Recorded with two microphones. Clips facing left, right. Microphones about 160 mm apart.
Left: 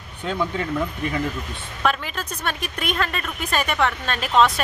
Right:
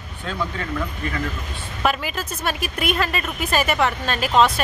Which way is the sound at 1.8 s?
5° right (ahead or behind).